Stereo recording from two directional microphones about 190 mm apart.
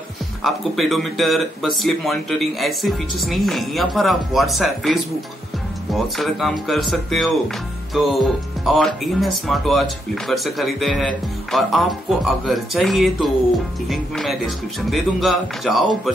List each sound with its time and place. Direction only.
0.4 s speech: centre (ahead or behind)